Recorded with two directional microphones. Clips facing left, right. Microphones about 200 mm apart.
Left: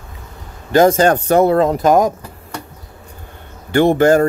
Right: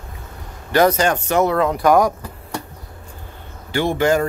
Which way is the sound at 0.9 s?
40° left (ahead or behind).